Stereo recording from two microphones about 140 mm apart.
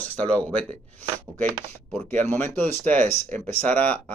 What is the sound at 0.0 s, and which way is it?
Speech, 10° left (ahead or behind).